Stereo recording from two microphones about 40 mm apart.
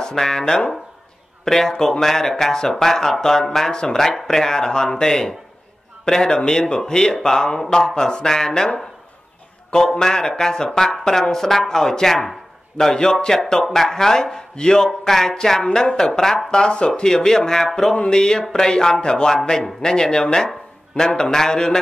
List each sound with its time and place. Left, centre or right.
0.0 s speech: centre
3.7 s speech: left
4.0 s a man's voice: centre